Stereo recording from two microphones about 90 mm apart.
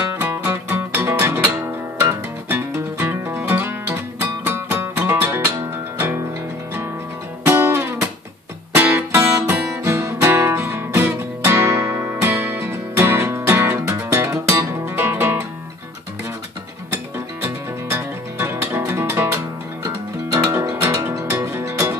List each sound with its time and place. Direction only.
0.0 s music: 30° right (ahead or behind)
7.4 s music: 25° right (ahead or behind)
16.9 s music: 30° right (ahead or behind)